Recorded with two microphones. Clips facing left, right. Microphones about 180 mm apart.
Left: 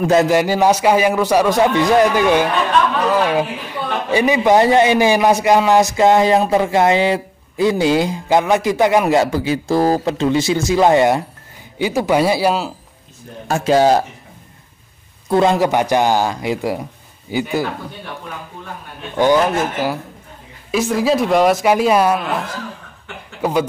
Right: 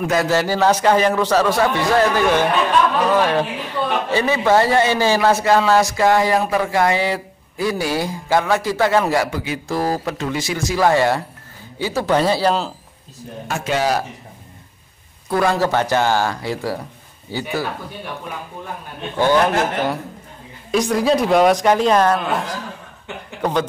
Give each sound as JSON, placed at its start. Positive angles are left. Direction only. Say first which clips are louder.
{"t": 0.0, "sound": "a man's voice", "louder": "left 5 dB", "side_deg": 25}
{"t": 0.3, "sound": "a man's voice", "louder": "left 3 dB", "side_deg": 15}
{"t": 13.5, "sound": "speech", "louder": "left 7 dB", "side_deg": 35}
{"t": 15.2, "sound": "a man's voice", "louder": "left 4 dB", "side_deg": 20}
{"t": 19.1, "sound": "a man's voice", "louder": "left 2 dB", "side_deg": 15}
{"t": 20.7, "sound": "speech", "louder": "even", "side_deg": 0}
{"t": 23.4, "sound": "a man's voice", "louder": "left 2 dB", "side_deg": 5}